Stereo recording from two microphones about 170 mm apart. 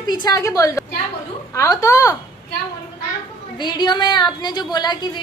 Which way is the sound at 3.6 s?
25° left (ahead or behind).